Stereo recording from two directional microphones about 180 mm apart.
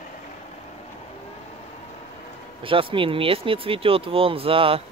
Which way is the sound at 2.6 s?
30° right (ahead or behind).